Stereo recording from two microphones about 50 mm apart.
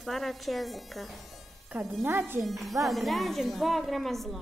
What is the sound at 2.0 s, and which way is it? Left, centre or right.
Speech, right.